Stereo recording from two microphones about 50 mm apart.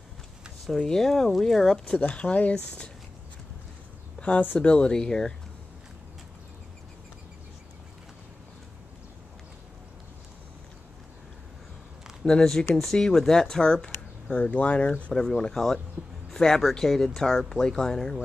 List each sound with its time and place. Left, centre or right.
0.7 s speech: centre
2.0 s speech: left
4.2 s speech: left
12.3 s speech: centre
14.3 s speech: left
15.1 s speech: centre